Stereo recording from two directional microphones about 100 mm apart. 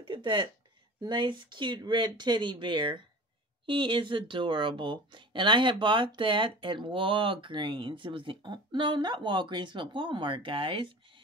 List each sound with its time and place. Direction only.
0.0 s speech: 55° right (ahead or behind)